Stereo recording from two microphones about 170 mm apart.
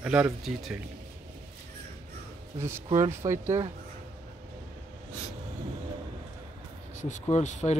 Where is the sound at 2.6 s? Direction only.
15° right (ahead or behind).